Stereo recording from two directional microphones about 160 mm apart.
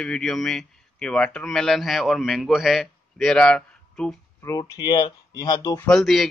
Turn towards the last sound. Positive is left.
turn(degrees=0)  # may be behind; listen again after turning